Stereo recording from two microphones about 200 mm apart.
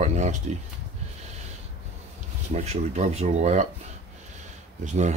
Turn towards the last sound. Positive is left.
turn(degrees=-35)  # may be behind; listen again after turning